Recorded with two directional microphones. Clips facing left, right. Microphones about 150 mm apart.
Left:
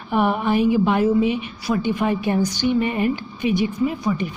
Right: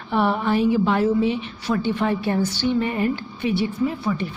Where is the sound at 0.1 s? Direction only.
15° left (ahead or behind).